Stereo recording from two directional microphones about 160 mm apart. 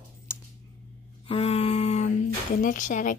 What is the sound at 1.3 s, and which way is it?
Speech, 40° left (ahead or behind).